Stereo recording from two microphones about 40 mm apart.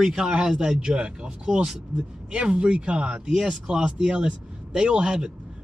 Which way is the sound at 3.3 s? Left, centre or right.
Centre.